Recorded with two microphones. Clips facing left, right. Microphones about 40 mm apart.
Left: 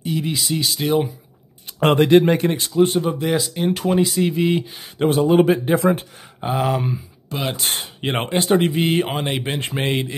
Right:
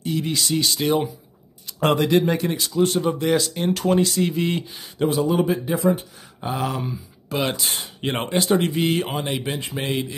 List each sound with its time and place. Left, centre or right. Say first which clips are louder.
0.0 s speech: left 1 dB; centre
1.8 s speech: left 5 dB; left
3.0 s speech: even; centre
5.0 s speech: left 5 dB; left
6.4 s a sound: left 5 dB; left
7.2 s speech: right 2 dB; centre
7.5 s speech: left 2 dB; left
8.0 s speech: left 1 dB; left